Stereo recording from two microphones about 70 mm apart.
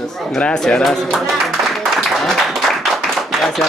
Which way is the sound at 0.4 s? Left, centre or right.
Centre.